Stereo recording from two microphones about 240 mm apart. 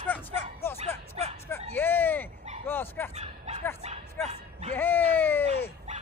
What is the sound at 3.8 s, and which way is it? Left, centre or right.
Bow-wow, right.